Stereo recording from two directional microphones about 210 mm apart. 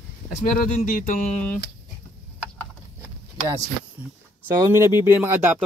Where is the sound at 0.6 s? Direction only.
40° left (ahead or behind).